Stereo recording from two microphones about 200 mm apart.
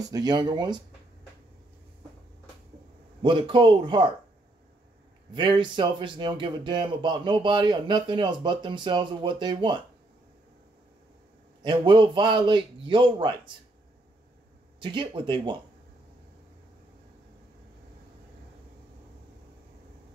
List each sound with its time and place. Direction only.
0.0 s speech: 20° right (ahead or behind)
3.2 s speech: 25° right (ahead or behind)
5.3 s speech: 25° right (ahead or behind)
11.6 s speech: 25° right (ahead or behind)
14.8 s speech: 25° right (ahead or behind)